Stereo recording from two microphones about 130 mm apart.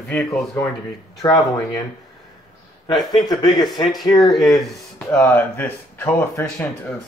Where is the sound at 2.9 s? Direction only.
30° left (ahead or behind).